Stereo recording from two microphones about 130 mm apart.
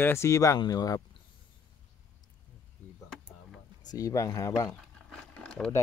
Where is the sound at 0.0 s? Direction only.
20° left (ahead or behind).